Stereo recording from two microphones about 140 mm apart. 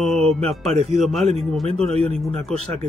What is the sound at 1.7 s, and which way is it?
Speech, 45° right (ahead or behind).